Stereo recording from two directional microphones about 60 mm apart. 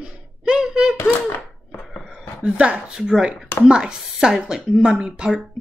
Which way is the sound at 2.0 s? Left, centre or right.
Centre.